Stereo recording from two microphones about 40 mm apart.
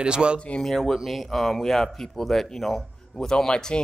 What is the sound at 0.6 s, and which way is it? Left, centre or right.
Speech, centre.